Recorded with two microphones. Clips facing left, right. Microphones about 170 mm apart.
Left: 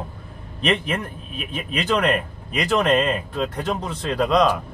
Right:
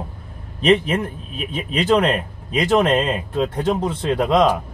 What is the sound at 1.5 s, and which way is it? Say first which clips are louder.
Speech: right 5 dB; 25° right (ahead or behind).